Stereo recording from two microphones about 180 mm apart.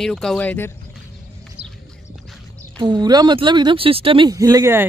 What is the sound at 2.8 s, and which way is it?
Speech, 25° right (ahead or behind).